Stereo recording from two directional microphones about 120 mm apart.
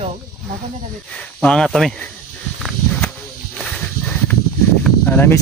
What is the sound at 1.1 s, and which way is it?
Speech, 5° left (ahead or behind).